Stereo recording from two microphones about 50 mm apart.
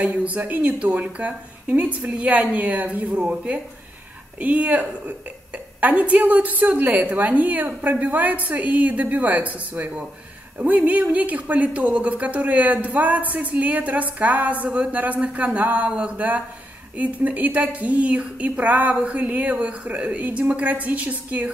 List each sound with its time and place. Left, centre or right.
0.0 s a woman's voice: right